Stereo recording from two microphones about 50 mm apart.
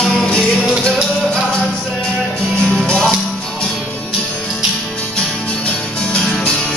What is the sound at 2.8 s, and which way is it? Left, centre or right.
Music, centre.